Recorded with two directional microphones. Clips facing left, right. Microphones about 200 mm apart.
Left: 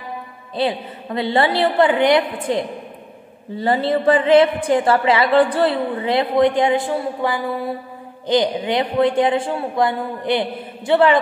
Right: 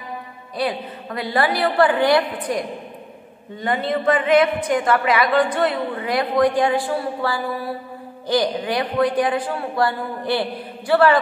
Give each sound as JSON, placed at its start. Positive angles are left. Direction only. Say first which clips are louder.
{"t": 0.6, "sound": "a man's voice", "louder": "left 3 dB", "side_deg": 25}